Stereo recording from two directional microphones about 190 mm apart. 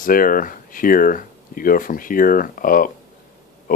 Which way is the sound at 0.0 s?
45° left (ahead or behind).